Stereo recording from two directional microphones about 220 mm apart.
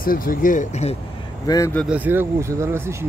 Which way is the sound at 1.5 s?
10° left (ahead or behind).